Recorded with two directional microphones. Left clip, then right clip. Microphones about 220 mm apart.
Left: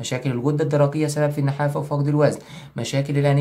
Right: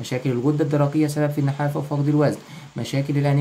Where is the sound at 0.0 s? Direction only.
10° left (ahead or behind).